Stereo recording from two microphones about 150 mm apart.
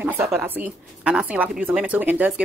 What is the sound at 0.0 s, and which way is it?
A woman's voice, 10° right (ahead or behind).